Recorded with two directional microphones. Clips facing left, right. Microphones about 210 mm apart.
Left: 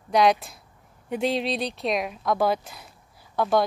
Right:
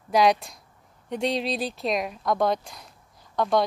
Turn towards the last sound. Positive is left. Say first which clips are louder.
# left 1 dB
turn(degrees=5)  # may be behind; listen again after turning